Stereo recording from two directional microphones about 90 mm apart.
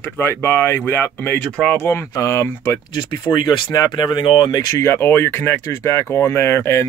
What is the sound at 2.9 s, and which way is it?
Speech, 55° left (ahead or behind).